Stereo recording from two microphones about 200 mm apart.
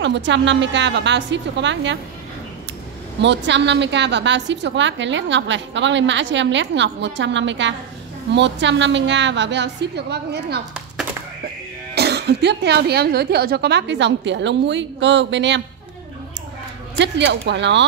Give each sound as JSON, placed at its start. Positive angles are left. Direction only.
{"t": 0.0, "sound": "a woman's voice", "side_deg": -60}
{"t": 3.2, "sound": "a woman's voice", "side_deg": -60}
{"t": 11.9, "sound": "a woman's voice", "side_deg": -55}
{"t": 17.0, "sound": "a woman's voice", "side_deg": -60}